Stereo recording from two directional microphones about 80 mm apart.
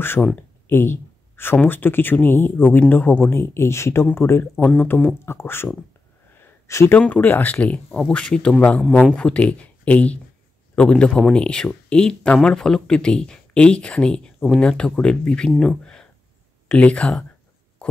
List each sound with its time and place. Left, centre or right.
0.2 s speech: centre
0.7 s speech: left
4.6 s speech: centre
6.4 s a sound: left
7.0 s speech: centre